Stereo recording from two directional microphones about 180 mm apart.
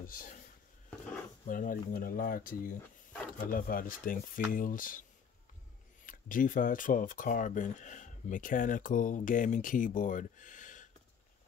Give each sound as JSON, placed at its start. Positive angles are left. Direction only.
{"t": 0.0, "sound": "speech", "side_deg": 50}
{"t": 1.5, "sound": "speech", "side_deg": 50}
{"t": 6.0, "sound": "speech", "side_deg": 50}